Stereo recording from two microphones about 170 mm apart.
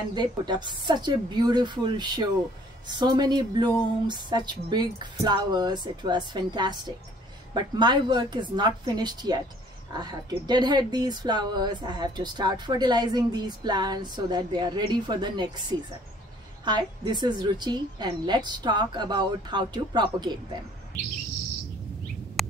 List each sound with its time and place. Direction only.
0.1 s speech: 25° right (ahead or behind)
16.6 s speech: 25° right (ahead or behind)
22.4 s bird: centre (ahead or behind)